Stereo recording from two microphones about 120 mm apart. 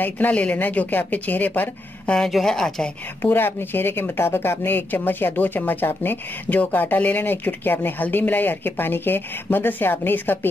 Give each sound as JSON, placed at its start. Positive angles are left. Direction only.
{"t": 0.0, "sound": "a woman's voice", "side_deg": 10}